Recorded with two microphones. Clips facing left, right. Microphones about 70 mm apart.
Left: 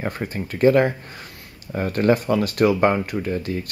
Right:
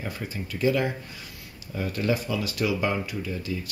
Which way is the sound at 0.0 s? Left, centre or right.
Left.